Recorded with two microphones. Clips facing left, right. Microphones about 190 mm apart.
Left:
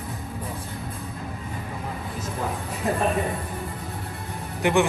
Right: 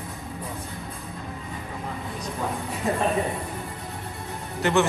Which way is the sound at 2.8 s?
Centre (ahead or behind).